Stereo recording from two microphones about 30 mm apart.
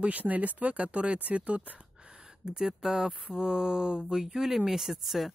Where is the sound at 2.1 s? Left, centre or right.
Right.